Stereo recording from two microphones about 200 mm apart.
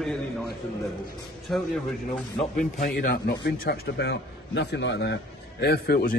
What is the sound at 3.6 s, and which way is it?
A man's voice, 55° left (ahead or behind).